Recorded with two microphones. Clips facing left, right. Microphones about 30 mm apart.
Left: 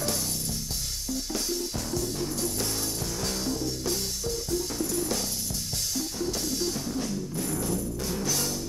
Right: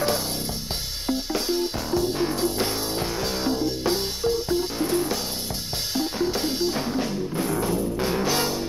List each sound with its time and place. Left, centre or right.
1.0 s music: right